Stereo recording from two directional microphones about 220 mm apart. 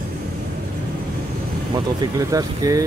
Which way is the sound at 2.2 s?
15° right (ahead or behind).